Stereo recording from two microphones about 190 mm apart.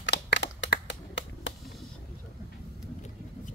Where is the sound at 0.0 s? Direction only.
65° left (ahead or behind).